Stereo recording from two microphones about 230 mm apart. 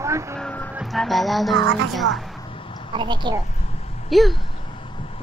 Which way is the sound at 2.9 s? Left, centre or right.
Centre.